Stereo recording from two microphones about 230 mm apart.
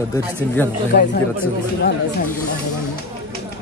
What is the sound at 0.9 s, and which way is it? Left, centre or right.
Speech, left.